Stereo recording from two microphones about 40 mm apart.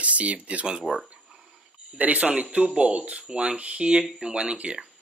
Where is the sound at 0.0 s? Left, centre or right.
Right.